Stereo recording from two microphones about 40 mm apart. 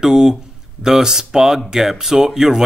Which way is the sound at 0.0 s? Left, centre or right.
Centre.